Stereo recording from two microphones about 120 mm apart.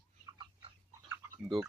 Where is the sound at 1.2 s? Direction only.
20° right (ahead or behind).